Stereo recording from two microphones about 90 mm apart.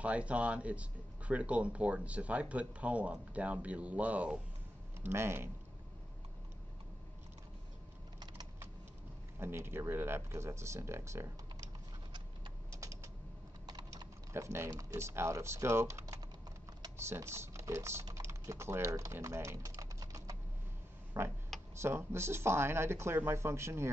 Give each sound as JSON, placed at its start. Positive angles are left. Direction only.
{"t": 0.0, "sound": "speech", "side_deg": -15}
{"t": 5.0, "sound": "speech", "side_deg": -30}
{"t": 9.4, "sound": "speech", "side_deg": -25}
{"t": 12.7, "sound": "typing", "side_deg": -35}
{"t": 13.7, "sound": "typing", "side_deg": -50}
{"t": 14.3, "sound": "speech", "side_deg": -30}
{"t": 18.0, "sound": "typing", "side_deg": -35}
{"t": 21.2, "sound": "a sound", "side_deg": -30}
{"t": 21.7, "sound": "speech", "side_deg": -30}